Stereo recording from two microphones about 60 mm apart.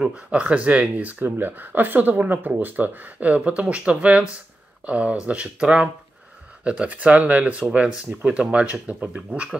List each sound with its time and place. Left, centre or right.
0.0 s speech: centre